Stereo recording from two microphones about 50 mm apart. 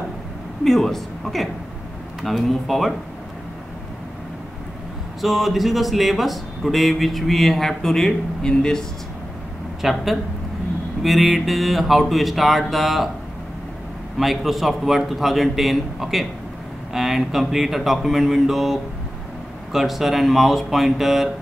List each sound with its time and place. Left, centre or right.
0.7 s speech: centre
5.2 s speech: centre
9.8 s speech: centre
14.1 s speech: centre